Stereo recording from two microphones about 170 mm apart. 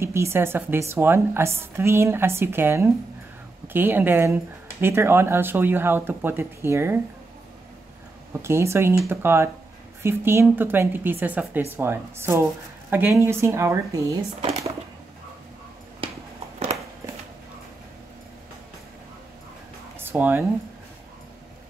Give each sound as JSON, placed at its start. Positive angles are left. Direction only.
{"t": 0.0, "sound": "a woman's voice", "side_deg": -15}
{"t": 8.3, "sound": "a woman's voice", "side_deg": -15}
{"t": 20.0, "sound": "a sound", "side_deg": -10}